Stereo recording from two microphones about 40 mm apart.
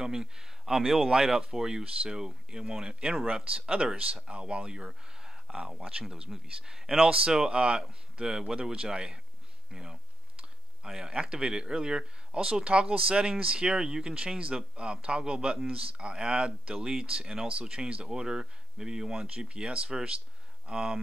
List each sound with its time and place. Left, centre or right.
0.0 s speech: centre
9.7 s clicking: centre
11.1 s speech: right
18.1 s speech: centre